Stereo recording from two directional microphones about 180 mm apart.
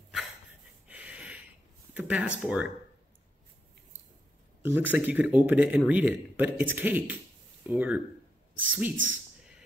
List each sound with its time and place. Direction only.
0.8 s a sound: 5° right (ahead or behind)
2.0 s a man's voice: 10° right (ahead or behind)
4.6 s a man's voice: 10° right (ahead or behind)
8.9 s a man's voice: 90° right